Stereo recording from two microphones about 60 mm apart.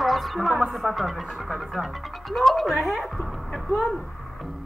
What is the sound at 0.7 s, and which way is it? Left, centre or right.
Speech, centre.